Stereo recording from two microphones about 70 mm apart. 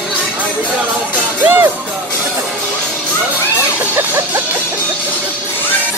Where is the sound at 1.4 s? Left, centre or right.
Right.